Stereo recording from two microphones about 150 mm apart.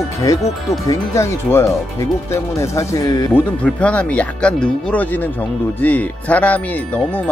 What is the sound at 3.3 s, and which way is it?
Speech, 10° left (ahead or behind).